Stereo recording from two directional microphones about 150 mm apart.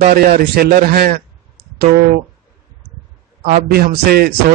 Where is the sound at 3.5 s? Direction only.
90° right.